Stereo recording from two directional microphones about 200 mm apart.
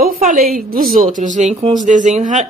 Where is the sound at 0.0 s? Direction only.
45° right (ahead or behind).